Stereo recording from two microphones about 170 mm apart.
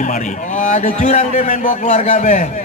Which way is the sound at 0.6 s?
50° left (ahead or behind).